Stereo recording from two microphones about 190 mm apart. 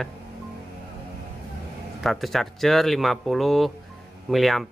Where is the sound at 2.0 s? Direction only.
Centre (ahead or behind).